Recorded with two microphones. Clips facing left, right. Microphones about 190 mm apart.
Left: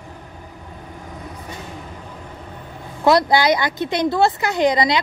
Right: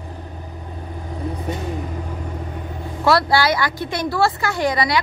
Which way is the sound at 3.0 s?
20° left (ahead or behind).